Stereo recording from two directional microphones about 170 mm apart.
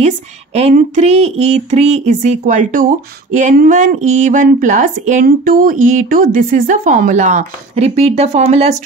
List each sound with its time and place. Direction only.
0.6 s speech: 45° right (ahead or behind)